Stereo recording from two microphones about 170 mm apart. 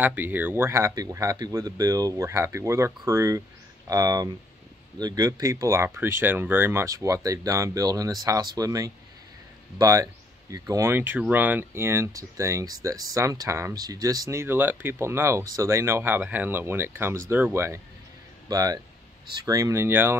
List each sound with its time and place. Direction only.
0.0 s speech: 10° right (ahead or behind)